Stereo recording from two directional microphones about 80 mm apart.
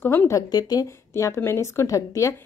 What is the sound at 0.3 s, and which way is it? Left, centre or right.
Speech, left.